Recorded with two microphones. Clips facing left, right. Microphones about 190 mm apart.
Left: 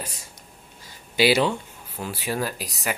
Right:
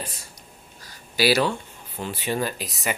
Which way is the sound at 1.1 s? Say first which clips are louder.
Left 1 dB; 20° left (ahead or behind).